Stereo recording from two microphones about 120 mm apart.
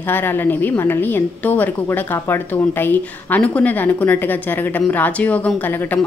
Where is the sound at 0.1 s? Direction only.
15° left (ahead or behind).